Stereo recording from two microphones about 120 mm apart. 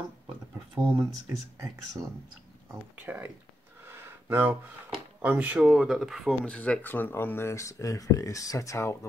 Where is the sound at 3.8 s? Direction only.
20° right (ahead or behind).